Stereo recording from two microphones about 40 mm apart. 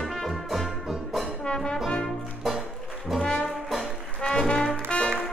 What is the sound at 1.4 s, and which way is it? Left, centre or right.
Trombone, centre.